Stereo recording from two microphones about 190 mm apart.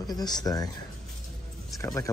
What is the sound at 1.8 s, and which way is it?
Speech, 15° left (ahead or behind).